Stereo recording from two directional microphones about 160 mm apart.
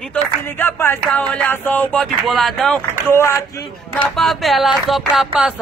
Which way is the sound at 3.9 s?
Centre (ahead or behind).